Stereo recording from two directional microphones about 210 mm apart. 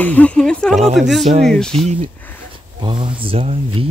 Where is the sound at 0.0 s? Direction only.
5° left (ahead or behind).